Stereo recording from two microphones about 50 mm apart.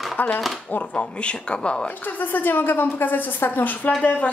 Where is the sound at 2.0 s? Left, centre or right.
Left.